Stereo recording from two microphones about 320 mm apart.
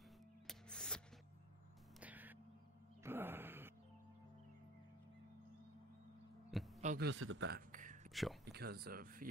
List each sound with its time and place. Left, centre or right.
0.5 s music: centre
3.0 s a sound: centre
6.8 s a man's voice: right
8.1 s speech: centre
8.5 s speech: right